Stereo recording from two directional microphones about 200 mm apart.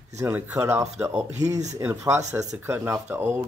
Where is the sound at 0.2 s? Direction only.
15° right (ahead or behind).